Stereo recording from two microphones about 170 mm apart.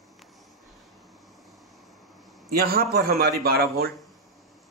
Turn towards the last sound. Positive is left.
turn(degrees=-65)  # may be behind; listen again after turning